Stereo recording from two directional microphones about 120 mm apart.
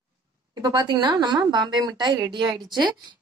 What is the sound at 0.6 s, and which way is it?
Speech, 35° right (ahead or behind).